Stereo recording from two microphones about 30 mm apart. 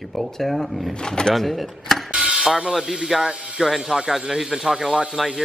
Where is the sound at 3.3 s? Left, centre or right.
Right.